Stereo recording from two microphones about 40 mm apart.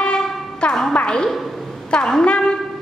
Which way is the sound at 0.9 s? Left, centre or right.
Left.